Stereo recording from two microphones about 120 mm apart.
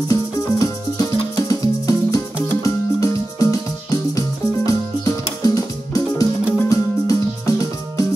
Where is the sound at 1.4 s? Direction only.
30° left (ahead or behind).